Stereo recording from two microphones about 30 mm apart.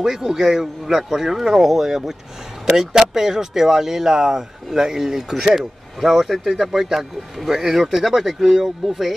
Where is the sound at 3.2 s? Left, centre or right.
Centre.